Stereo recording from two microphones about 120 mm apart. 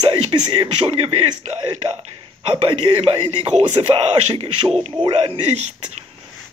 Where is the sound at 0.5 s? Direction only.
50° right (ahead or behind).